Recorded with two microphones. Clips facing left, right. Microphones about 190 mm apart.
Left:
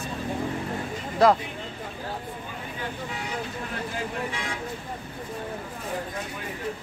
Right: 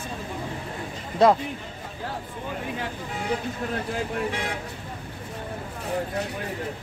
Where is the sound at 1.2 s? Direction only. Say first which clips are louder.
Right 1 dB; 20° right (ahead or behind).